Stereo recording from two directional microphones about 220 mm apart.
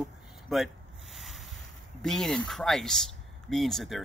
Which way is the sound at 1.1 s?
Centre (ahead or behind).